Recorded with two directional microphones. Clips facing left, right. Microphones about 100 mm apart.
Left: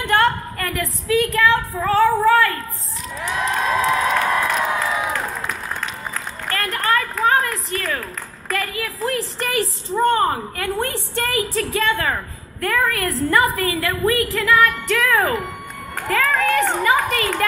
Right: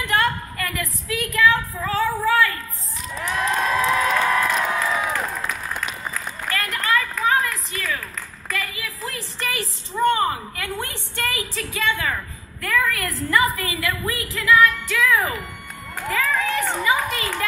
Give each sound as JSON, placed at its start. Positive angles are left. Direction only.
{"t": 0.2, "sound": "a woman's voice", "side_deg": 40}
{"t": 3.2, "sound": "cheering", "side_deg": 5}
{"t": 4.3, "sound": "crowd", "side_deg": 5}
{"t": 6.1, "sound": "a sound", "side_deg": 40}
{"t": 8.5, "sound": "a woman's voice", "side_deg": 45}
{"t": 14.7, "sound": "speech", "side_deg": 55}
{"t": 17.1, "sound": "speech", "side_deg": 55}